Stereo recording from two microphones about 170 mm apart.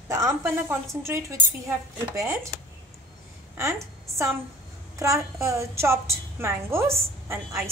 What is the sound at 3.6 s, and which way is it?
A woman's voice, 15° right (ahead or behind).